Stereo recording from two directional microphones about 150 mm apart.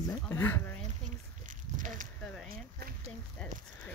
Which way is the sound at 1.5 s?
60° right (ahead or behind).